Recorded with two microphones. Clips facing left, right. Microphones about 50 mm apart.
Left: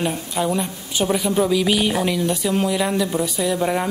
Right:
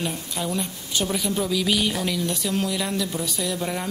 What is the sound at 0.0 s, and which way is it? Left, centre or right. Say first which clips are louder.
Speech: left 6 dB; left.